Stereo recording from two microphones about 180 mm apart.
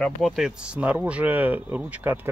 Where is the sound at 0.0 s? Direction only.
Centre (ahead or behind).